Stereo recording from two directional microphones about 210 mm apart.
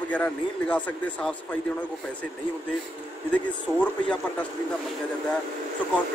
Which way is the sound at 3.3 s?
5° left (ahead or behind).